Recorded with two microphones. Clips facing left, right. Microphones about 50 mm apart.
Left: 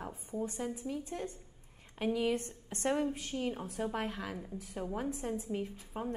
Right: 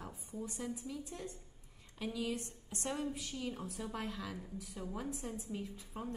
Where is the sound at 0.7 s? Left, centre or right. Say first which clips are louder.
Left 6 dB; left.